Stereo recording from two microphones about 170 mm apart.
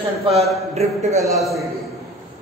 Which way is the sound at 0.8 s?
40° right (ahead or behind).